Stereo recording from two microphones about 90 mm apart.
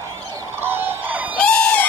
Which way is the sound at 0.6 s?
25° right (ahead or behind).